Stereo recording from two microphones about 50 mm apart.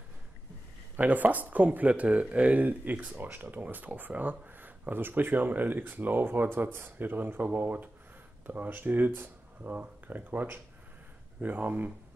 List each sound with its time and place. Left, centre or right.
0.9 s speech: right